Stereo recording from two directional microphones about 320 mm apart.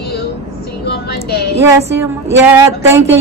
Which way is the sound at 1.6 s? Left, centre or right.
Centre.